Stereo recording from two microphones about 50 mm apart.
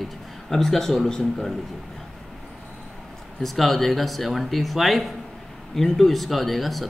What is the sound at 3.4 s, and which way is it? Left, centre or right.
Speech, centre.